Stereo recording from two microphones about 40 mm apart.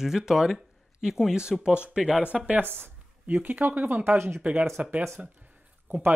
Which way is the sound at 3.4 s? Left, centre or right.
Right.